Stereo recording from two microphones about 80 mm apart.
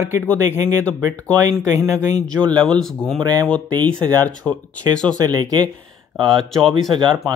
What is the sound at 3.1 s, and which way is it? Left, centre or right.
Speech, right.